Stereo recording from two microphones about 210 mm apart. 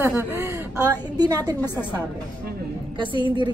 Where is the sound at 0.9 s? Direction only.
15° right (ahead or behind).